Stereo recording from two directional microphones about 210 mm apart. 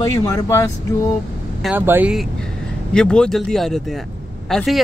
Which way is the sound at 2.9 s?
5° left (ahead or behind).